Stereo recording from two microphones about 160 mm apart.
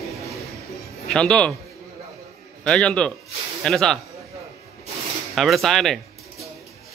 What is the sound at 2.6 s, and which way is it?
Speech, 5° left (ahead or behind).